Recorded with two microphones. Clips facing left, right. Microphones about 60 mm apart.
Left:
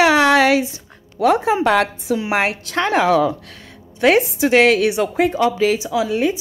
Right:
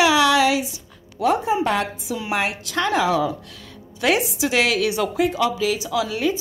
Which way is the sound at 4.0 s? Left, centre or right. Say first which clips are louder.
Left 6 dB; left.